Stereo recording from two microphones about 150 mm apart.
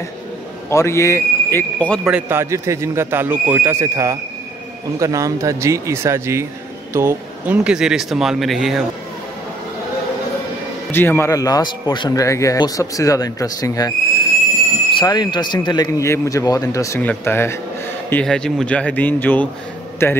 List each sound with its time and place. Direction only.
0.7 s a man's voice: 20° left (ahead or behind)
2.0 s a man's voice: 10° right (ahead or behind)
10.9 s speech: 15° left (ahead or behind)
18.1 s speech: 5° left (ahead or behind)